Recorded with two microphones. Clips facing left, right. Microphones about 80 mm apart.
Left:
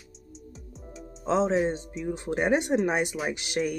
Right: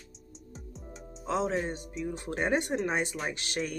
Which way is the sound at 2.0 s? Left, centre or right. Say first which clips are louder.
Left 5 dB; left.